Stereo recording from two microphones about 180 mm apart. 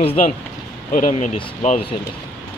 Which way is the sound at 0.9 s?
45° left (ahead or behind).